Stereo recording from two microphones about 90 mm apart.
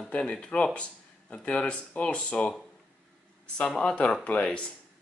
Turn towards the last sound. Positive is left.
turn(degrees=15)  # may be behind; listen again after turning